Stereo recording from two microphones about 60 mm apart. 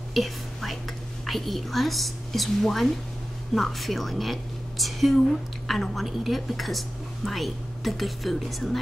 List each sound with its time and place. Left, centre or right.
0.1 s whispering: centre
1.2 s a woman's voice: centre